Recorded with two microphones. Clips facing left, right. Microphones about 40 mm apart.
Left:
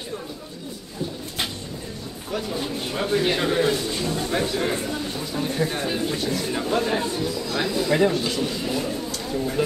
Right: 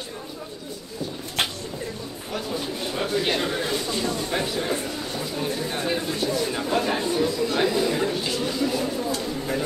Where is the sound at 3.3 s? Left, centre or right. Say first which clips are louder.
Left 3 dB; centre.